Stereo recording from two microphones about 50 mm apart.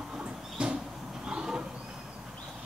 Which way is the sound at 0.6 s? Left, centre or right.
Centre.